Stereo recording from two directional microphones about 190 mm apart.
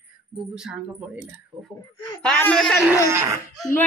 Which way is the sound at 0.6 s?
5° right (ahead or behind).